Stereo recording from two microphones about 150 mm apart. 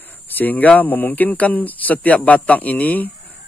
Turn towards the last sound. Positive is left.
turn(degrees=10)  # may be behind; listen again after turning